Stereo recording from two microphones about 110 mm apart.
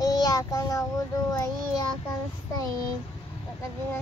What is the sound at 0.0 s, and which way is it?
Child singing, 35° left (ahead or behind).